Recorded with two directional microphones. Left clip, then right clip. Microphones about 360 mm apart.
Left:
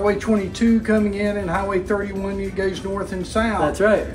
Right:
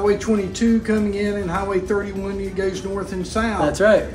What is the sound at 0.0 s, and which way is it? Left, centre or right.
Speech, centre.